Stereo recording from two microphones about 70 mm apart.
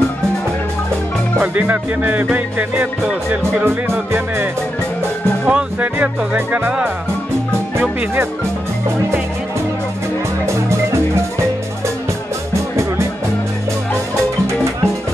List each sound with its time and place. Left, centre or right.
1.4 s music: right
5.4 s speech: centre
6.3 s music: right
10.4 s music: right